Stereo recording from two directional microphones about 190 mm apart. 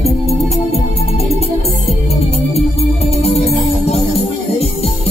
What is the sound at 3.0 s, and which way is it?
Music, 35° left (ahead or behind).